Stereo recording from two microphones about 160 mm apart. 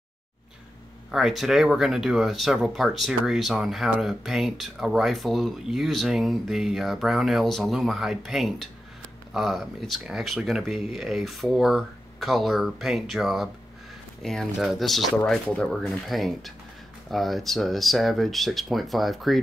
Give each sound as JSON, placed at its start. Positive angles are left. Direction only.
{"t": 1.1, "sound": "speech", "side_deg": -5}